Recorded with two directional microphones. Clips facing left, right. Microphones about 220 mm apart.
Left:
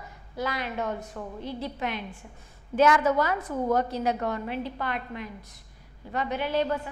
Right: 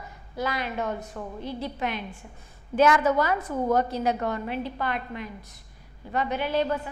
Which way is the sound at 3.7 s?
10° right (ahead or behind).